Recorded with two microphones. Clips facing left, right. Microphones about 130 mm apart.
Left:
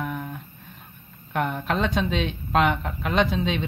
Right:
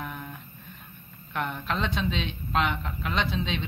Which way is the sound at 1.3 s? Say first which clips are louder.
Left 5 dB; 45° left (ahead or behind).